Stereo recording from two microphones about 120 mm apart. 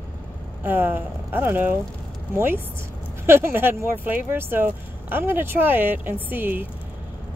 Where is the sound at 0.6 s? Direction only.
15° right (ahead or behind).